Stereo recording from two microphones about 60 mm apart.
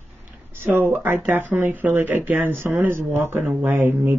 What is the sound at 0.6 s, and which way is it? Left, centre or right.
Speech, right.